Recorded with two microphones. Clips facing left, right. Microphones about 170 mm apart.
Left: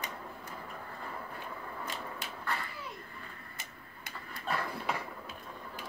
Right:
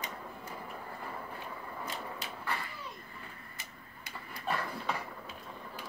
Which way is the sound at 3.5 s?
50° left (ahead or behind).